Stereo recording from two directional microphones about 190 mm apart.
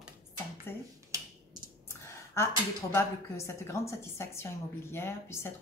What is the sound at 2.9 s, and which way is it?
Speech, 15° left (ahead or behind).